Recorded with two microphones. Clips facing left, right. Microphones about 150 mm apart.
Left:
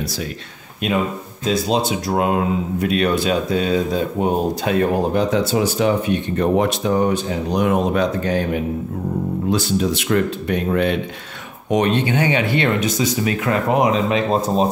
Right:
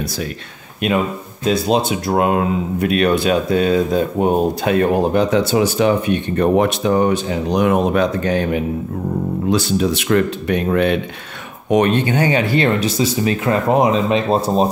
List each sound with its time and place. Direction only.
1.4 s speech: 60° right (ahead or behind)
9.5 s speech: 70° right (ahead or behind)
11.7 s speech: 55° right (ahead or behind); by 14.2 s 30° right (ahead or behind)